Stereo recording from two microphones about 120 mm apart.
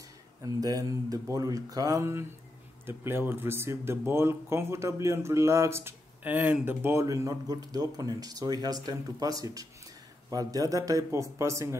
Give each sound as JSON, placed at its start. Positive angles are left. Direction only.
{"t": 0.4, "sound": "speech", "side_deg": -30}